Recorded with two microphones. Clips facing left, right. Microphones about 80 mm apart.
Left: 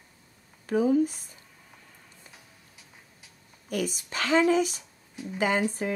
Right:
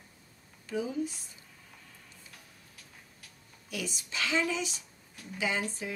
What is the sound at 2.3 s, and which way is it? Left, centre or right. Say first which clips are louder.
Music: left 1 dB; centre.